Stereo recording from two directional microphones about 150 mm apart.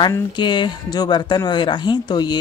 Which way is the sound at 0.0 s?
30° left (ahead or behind).